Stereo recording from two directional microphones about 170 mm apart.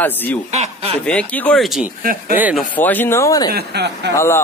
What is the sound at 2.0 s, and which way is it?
Speech, 55° right (ahead or behind).